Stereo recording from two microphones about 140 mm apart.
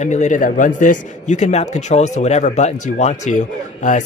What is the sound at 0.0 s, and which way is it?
A man's voice, 60° left (ahead or behind).